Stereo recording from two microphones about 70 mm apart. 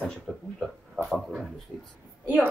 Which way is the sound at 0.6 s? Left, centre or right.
Centre.